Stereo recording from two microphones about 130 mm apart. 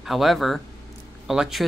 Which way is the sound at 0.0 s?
Centre (ahead or behind).